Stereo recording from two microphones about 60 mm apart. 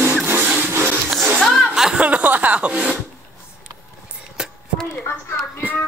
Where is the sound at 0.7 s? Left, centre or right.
Right.